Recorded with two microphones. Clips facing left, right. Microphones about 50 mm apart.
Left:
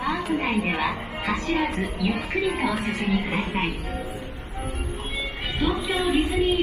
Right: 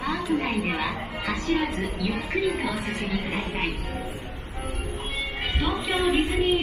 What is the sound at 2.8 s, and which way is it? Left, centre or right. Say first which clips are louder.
Speech: left 4 dB; left.